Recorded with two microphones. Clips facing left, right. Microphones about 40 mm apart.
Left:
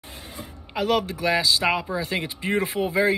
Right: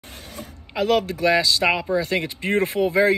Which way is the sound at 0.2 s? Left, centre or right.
Left.